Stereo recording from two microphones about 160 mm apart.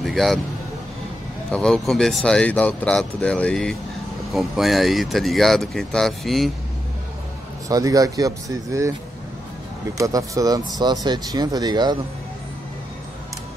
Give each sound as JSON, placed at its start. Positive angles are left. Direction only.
{"t": 0.0, "sound": "a sound", "side_deg": 0}
{"t": 1.5, "sound": "speech", "side_deg": 5}
{"t": 7.6, "sound": "speech", "side_deg": -20}
{"t": 9.9, "sound": "speech", "side_deg": -20}